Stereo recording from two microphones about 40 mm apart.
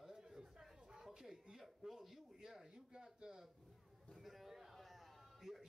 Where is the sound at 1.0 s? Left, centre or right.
Centre.